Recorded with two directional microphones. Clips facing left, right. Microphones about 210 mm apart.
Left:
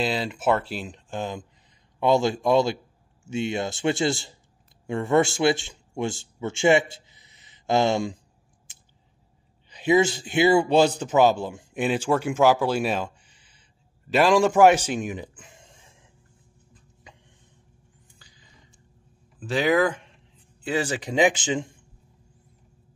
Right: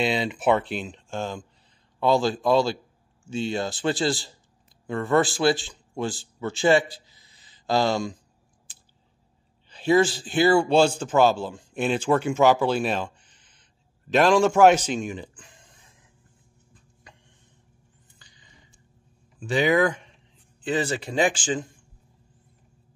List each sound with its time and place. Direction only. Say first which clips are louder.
0.0 s a man's voice: right 1 dB; centre (ahead or behind); by 8.2 s 25° left (ahead or behind)
9.7 s a man's voice: even; 15° left (ahead or behind)
18.0 s a sound: left 2 dB; 5° left (ahead or behind)
19.4 s a man's voice: even; centre (ahead or behind); by 21.6 s 20° left (ahead or behind)